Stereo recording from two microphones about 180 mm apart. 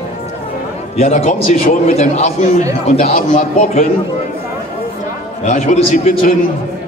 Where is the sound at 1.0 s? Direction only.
40° left (ahead or behind).